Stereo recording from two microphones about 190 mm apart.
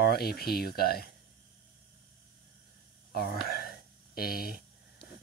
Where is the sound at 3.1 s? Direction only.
55° left (ahead or behind).